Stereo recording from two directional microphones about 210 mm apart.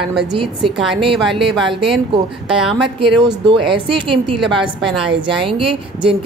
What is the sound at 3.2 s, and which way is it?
A woman's voice, 25° right (ahead or behind).